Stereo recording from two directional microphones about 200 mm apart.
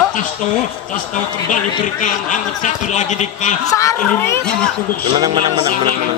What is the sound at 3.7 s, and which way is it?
Speech, 15° left (ahead or behind).